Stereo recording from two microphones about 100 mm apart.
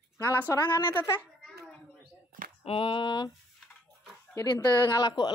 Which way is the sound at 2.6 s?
70° left (ahead or behind).